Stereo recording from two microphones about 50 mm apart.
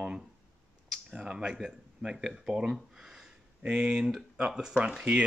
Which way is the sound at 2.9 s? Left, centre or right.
Centre.